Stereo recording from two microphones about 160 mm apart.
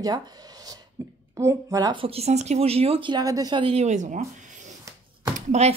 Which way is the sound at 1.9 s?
35° right (ahead or behind).